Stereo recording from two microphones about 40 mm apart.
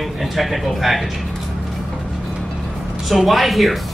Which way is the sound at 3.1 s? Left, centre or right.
Centre.